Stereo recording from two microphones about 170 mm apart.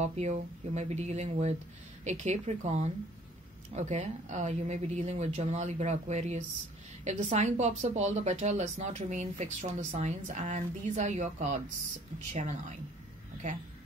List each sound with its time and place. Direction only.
0.0 s speech: 40° right (ahead or behind)